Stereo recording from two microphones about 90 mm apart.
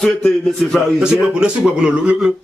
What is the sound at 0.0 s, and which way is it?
Speech, 5° left (ahead or behind).